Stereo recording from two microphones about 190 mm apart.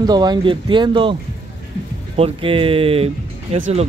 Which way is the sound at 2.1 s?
30° right (ahead or behind).